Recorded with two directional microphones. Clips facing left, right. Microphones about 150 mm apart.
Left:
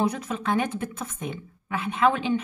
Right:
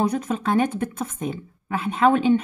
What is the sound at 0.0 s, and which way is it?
A woman's voice, 45° right (ahead or behind).